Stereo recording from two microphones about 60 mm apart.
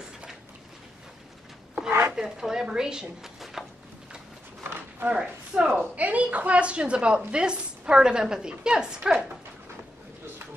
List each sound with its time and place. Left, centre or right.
1.9 s chopping: right
2.1 s speech: centre
4.6 s a sound: right
5.1 s a woman's voice: centre